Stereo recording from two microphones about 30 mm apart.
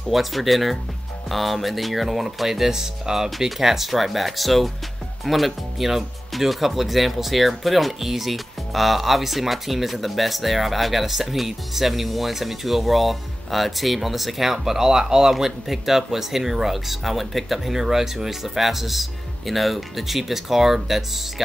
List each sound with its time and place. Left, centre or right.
0.1 s speech: centre
2.7 s speech: centre
3.3 s speech: centre
15.3 s speech: centre